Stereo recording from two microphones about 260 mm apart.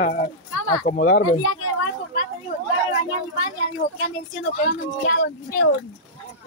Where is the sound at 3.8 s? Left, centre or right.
Left.